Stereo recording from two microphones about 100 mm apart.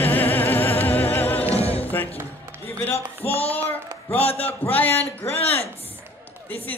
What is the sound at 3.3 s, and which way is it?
Child singing, 80° left.